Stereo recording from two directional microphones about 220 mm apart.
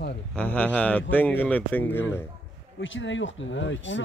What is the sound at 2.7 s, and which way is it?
Speech, 60° left (ahead or behind).